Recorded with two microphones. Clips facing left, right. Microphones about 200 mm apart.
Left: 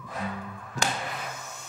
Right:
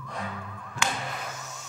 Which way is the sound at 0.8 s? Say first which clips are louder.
Left 1 dB; 35° left (ahead or behind).